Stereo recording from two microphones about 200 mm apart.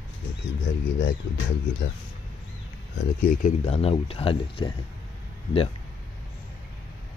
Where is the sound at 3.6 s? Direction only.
30° left (ahead or behind).